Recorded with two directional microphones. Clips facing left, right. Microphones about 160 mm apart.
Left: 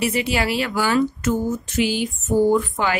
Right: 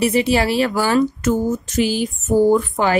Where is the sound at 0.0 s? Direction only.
35° right (ahead or behind).